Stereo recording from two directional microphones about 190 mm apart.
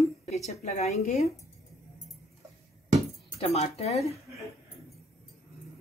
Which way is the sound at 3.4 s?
35° left (ahead or behind).